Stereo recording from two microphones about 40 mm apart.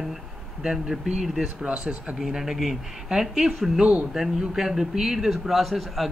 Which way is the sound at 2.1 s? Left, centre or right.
Centre.